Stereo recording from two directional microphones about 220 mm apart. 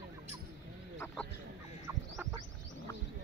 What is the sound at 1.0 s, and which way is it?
Fowl, 5° left (ahead or behind).